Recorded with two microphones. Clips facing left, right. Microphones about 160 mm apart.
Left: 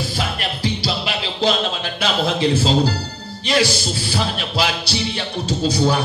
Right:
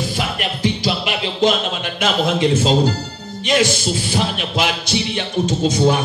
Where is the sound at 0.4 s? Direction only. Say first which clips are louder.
Right 3 dB; 35° left (ahead or behind).